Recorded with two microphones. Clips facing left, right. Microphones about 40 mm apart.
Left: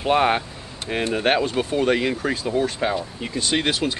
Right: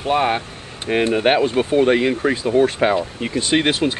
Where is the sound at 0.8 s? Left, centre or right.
Right.